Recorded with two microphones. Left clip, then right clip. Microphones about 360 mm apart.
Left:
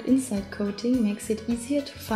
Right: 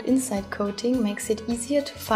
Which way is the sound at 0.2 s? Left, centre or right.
Right.